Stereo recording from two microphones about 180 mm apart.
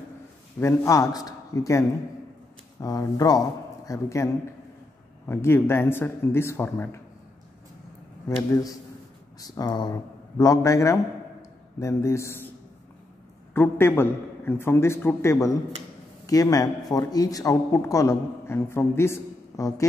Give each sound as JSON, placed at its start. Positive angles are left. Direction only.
{"t": 0.6, "sound": "a man's voice", "side_deg": 15}
{"t": 8.4, "sound": "a man's voice", "side_deg": 15}
{"t": 13.5, "sound": "a man's voice", "side_deg": 10}